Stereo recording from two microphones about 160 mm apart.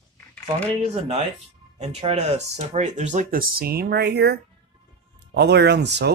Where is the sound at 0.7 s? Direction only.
40° right (ahead or behind); by 6.1 s 90° right.